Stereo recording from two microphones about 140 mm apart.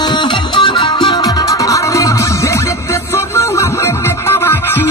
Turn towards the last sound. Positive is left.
turn(degrees=15)  # may be behind; listen again after turning